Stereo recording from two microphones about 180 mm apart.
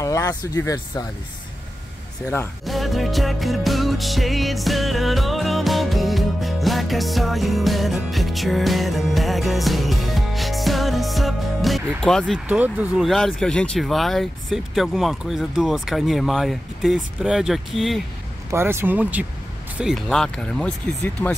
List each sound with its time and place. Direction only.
0.0 s speech: 15° left (ahead or behind)
2.6 s music: centre (ahead or behind)
12.4 s speech: 10° right (ahead or behind)
18.5 s speech: 15° right (ahead or behind); by 21.4 s 10° left (ahead or behind)